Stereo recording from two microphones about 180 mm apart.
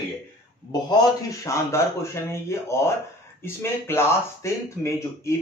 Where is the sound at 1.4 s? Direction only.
15° left (ahead or behind).